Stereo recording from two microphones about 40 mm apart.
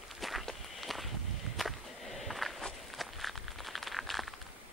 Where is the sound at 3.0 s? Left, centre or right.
Centre.